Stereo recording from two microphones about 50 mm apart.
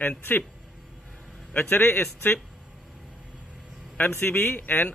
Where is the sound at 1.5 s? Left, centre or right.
Left.